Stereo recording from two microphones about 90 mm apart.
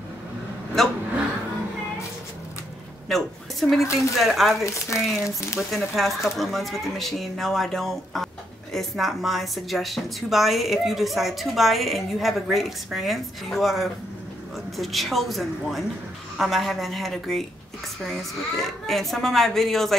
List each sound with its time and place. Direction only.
3.1 s a woman's voice: centre (ahead or behind)
4.6 s speech: 35° left (ahead or behind)
5.0 s a woman's voice: centre (ahead or behind)